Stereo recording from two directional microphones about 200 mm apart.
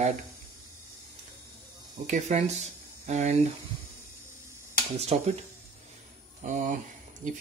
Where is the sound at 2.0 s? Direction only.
35° right (ahead or behind).